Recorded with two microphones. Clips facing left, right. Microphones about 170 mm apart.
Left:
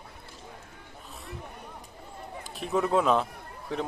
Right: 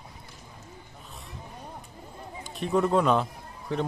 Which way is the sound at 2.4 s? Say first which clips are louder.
Right 3 dB; centre (ahead or behind).